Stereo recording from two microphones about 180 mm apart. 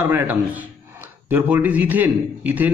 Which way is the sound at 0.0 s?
10° right (ahead or behind).